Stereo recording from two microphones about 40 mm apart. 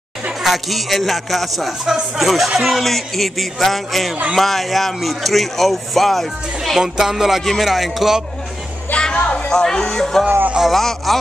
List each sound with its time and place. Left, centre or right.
0.4 s speech: centre
6.8 s music: centre
7.4 s speech: centre
9.0 s music: left
9.5 s speech: centre